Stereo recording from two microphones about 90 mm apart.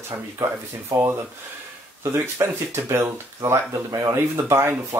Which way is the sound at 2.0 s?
30° right (ahead or behind).